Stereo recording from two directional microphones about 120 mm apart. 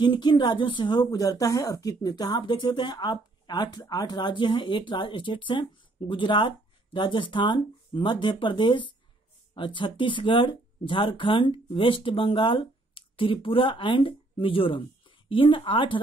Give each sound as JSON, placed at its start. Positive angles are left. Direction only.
{"t": 0.0, "sound": "speech", "side_deg": 40}
{"t": 1.1, "sound": "speech", "side_deg": 30}